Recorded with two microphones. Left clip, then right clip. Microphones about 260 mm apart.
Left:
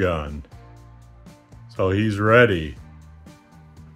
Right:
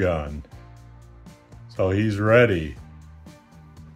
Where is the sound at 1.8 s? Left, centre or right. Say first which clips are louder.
Left 1 dB; centre.